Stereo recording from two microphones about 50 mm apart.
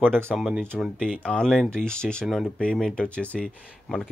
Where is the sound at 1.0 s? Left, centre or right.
Centre.